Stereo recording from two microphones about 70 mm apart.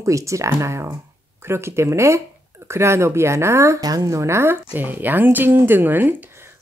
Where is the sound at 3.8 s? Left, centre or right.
Right.